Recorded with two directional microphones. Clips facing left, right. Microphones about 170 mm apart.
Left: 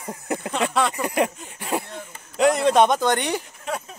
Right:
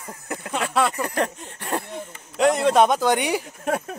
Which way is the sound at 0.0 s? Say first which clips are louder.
Left 5 dB; 20° left (ahead or behind).